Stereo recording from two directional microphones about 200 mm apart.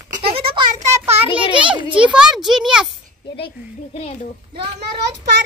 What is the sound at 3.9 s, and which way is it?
Speech, 30° left (ahead or behind).